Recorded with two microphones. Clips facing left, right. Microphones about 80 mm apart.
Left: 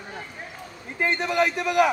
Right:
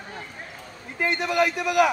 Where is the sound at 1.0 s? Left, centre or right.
Left.